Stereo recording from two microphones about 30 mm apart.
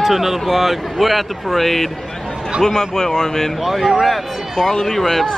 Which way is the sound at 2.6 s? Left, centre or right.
Centre.